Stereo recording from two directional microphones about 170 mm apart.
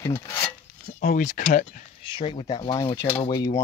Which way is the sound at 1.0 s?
50° left (ahead or behind).